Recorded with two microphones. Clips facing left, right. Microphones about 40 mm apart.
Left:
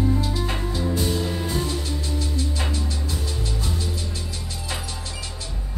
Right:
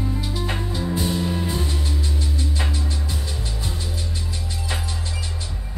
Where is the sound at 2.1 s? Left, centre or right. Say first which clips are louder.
Even; right.